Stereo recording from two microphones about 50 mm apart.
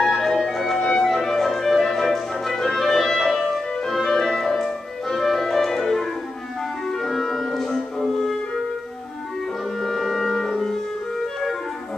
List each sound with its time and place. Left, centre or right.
0.0 s music: centre
0.7 s music: centre
1.1 s music: centre
6.9 s clarinet: centre
9.8 s music: centre
10.6 s clarinet: centre